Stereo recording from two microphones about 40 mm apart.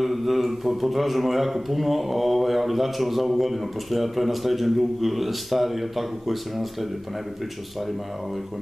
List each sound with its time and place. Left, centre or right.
0.0 s a man's voice: centre